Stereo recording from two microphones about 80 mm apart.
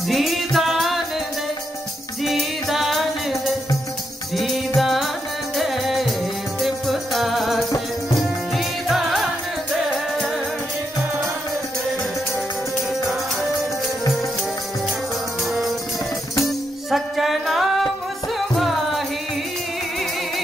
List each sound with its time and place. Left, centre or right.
0.1 s music: centre
2.2 s music: centre
16.4 s music: centre